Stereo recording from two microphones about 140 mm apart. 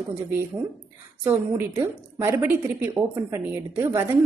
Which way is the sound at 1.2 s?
15° right (ahead or behind).